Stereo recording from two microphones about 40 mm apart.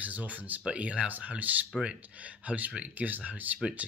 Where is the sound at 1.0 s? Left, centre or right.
Right.